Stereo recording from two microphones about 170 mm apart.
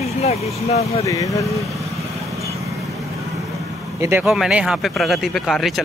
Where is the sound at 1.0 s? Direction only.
20° left (ahead or behind).